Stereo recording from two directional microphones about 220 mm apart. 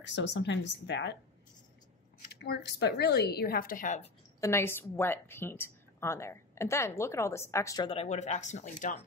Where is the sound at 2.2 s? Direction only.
45° left (ahead or behind).